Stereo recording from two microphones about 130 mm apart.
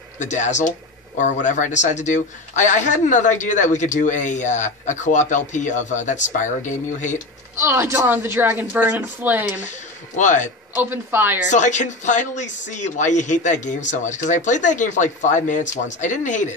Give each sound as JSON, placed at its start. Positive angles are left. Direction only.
{"t": 0.2, "sound": "speech", "side_deg": 65}
{"t": 7.5, "sound": "a woman's voice", "side_deg": -20}
{"t": 10.1, "sound": "speech", "side_deg": 70}
{"t": 10.7, "sound": "a woman's voice", "side_deg": -15}
{"t": 11.5, "sound": "speech", "side_deg": 70}